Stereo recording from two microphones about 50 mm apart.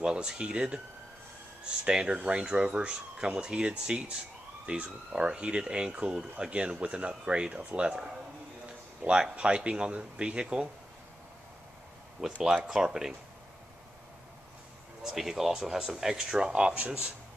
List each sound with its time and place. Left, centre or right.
0.0 s speech: centre
12.5 s speech: centre
15.0 s speech: centre; by 17.1 s right